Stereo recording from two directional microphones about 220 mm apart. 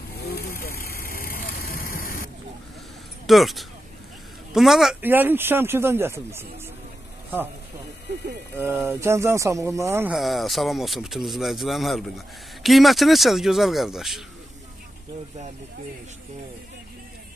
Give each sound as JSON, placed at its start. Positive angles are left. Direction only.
{"t": 0.2, "sound": "vehicle", "side_deg": 45}
{"t": 3.3, "sound": "speech", "side_deg": 0}
{"t": 8.5, "sound": "speech", "side_deg": -10}